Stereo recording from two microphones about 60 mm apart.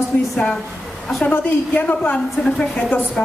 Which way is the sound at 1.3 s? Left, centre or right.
Left.